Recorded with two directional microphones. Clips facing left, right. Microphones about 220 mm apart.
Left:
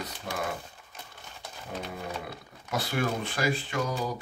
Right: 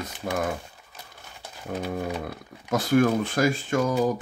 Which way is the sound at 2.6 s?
45° right (ahead or behind).